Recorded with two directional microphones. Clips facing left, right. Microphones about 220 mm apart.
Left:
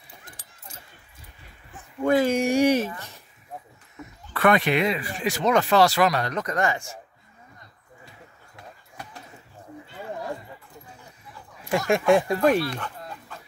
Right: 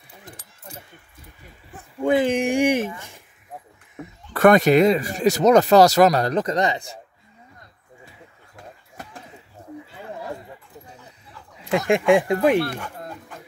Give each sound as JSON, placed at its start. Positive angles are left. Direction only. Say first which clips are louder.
{"t": 2.0, "sound": "speech", "louder": "right 1 dB", "side_deg": -15}
{"t": 3.9, "sound": "speech", "louder": "right 4 dB", "side_deg": -45}
{"t": 6.4, "sound": "speech", "louder": "right 3 dB", "side_deg": -20}
{"t": 8.5, "sound": "a sound", "louder": "right 2 dB", "side_deg": -45}
{"t": 11.5, "sound": "a sound", "louder": "right 3 dB", "side_deg": -20}
{"t": 12.1, "sound": "speech", "louder": "right 2 dB", "side_deg": -15}